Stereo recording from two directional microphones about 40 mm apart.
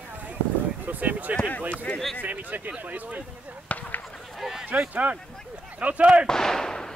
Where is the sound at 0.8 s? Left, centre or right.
Right.